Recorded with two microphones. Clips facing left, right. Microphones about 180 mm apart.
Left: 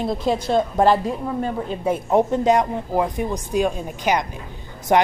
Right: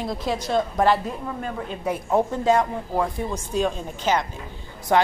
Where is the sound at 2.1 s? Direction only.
20° left (ahead or behind).